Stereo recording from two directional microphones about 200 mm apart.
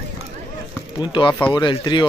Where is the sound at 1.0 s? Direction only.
25° left (ahead or behind).